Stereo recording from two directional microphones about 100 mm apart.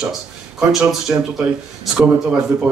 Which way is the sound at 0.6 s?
Centre (ahead or behind).